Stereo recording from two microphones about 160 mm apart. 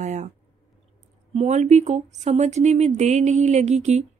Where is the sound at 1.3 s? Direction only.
45° right (ahead or behind).